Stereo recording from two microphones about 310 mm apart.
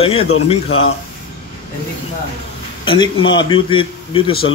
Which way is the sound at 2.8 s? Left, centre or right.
Centre.